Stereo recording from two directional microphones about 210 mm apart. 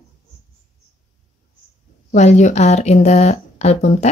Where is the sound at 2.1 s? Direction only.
35° left (ahead or behind).